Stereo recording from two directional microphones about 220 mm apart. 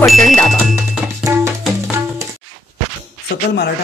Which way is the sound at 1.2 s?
10° right (ahead or behind).